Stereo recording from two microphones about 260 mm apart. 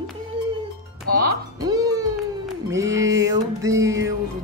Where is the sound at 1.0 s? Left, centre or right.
Right.